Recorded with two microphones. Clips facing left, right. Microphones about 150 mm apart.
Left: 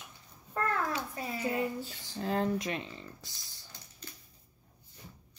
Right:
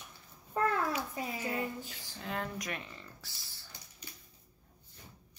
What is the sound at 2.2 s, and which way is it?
Speech, 30° left (ahead or behind).